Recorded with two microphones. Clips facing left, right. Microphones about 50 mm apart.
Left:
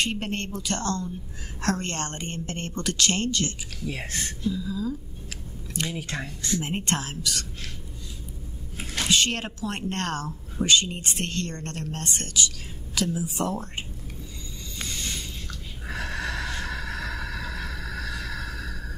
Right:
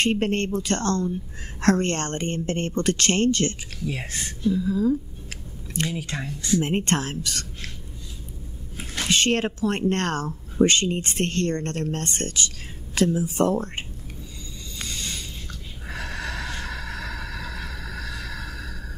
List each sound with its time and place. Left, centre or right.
0.0 s speech: right
5.9 s speech: left
6.1 s speech: right
6.6 s speech: right
8.9 s speech: right
14.9 s a sound: left
15.9 s snort: left
16.7 s vehicle: left
17.3 s a sound: left